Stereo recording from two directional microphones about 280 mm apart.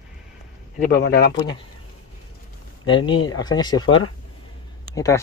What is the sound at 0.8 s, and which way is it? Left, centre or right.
Speech, left.